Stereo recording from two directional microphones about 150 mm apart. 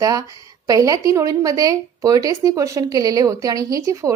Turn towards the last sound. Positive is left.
turn(degrees=-20)  # may be behind; listen again after turning